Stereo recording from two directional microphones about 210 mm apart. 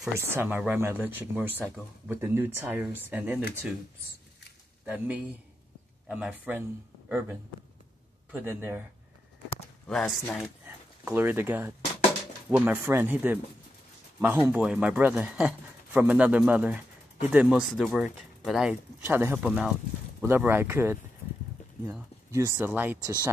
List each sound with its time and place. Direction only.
0.0 s speech: 10° right (ahead or behind)
4.8 s speech: 5° right (ahead or behind)
9.8 s speech: centre (ahead or behind)
11.1 s speech: 10° right (ahead or behind)
22.6 s speech: 10° right (ahead or behind)